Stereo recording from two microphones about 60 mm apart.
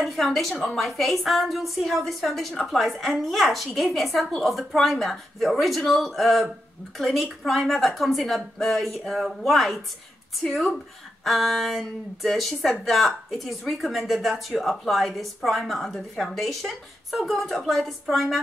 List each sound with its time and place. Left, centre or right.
0.0 s speech: centre